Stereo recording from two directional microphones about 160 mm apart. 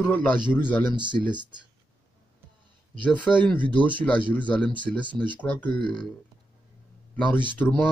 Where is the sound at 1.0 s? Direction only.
30° right (ahead or behind).